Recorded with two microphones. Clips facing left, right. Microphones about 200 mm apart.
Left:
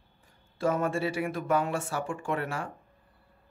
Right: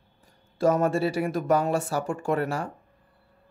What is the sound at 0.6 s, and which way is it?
Speech, 40° right (ahead or behind).